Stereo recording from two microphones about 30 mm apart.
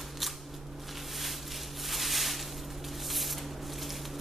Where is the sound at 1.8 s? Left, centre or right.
Centre.